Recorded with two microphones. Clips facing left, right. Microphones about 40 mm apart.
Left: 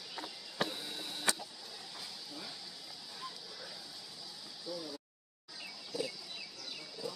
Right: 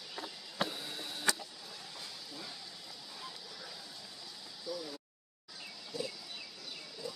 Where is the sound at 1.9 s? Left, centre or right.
Centre.